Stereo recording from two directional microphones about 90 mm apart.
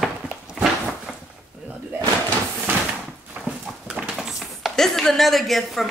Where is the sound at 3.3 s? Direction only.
15° right (ahead or behind).